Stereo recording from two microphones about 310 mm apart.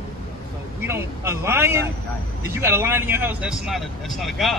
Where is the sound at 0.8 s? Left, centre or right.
Centre.